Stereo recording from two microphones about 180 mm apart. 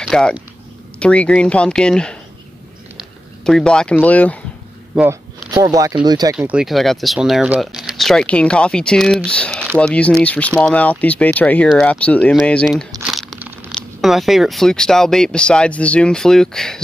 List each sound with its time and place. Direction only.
0.0 s speech: centre (ahead or behind)
4.9 s speech: 5° right (ahead or behind)
5.5 s speech: 20° right (ahead or behind)
6.3 s speech: 5° right (ahead or behind)
13.4 s a sound: 10° right (ahead or behind)
13.7 s speech: centre (ahead or behind)